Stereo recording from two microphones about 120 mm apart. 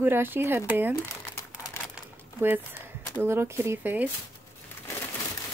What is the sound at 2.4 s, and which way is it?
Speech, 15° right (ahead or behind).